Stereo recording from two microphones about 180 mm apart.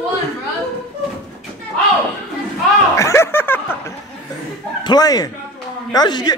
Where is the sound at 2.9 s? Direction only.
15° left (ahead or behind).